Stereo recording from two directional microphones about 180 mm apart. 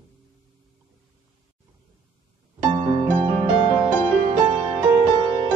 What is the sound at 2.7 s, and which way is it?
Music, 30° right (ahead or behind).